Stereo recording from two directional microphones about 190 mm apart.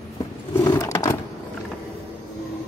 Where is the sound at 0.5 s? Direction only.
15° left (ahead or behind).